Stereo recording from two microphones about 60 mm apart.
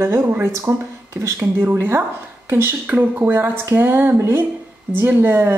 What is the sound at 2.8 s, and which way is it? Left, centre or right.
Speech, right.